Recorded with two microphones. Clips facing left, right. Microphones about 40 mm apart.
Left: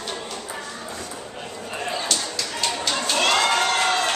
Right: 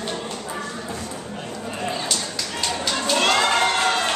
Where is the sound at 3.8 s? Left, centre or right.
Centre.